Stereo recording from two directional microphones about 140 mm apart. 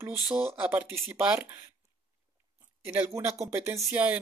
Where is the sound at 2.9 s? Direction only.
15° right (ahead or behind).